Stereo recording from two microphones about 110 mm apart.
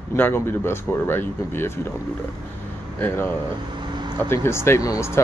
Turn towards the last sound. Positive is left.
turn(degrees=25)  # may be behind; listen again after turning